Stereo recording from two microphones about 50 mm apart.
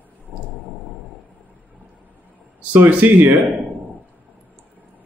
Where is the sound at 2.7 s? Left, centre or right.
Right.